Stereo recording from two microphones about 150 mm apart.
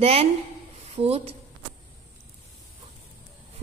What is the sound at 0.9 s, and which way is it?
Speech, 45° right (ahead or behind).